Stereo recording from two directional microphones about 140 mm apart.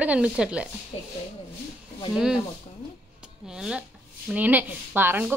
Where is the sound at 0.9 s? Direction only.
45° left (ahead or behind).